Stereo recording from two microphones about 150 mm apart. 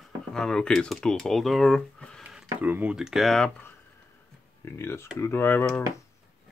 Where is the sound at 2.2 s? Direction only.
5° right (ahead or behind).